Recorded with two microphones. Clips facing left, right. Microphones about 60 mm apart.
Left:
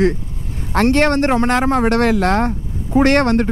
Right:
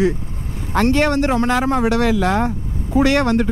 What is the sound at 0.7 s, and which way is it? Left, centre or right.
Speech, left.